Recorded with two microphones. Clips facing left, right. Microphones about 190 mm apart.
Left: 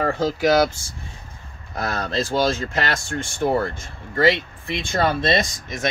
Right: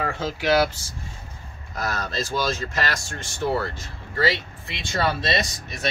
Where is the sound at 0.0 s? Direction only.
40° left (ahead or behind).